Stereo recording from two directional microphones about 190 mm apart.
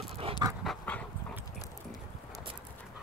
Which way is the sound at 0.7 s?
5° left (ahead or behind).